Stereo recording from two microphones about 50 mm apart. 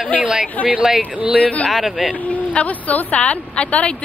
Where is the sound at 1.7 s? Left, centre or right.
Centre.